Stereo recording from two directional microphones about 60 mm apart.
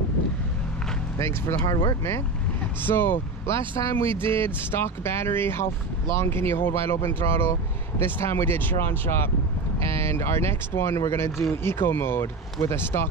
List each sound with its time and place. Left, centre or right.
1.1 s speech: left
2.8 s speech: left